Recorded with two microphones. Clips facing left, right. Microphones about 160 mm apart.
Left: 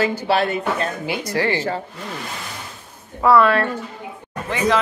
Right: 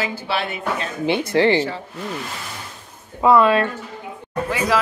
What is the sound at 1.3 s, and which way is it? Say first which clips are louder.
Speech: right 5 dB; 25° right (ahead or behind).